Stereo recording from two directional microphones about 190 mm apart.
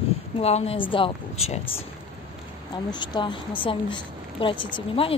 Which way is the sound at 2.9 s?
25° left (ahead or behind).